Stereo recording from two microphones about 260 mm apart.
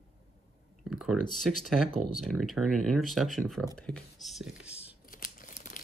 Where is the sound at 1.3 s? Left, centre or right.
Centre.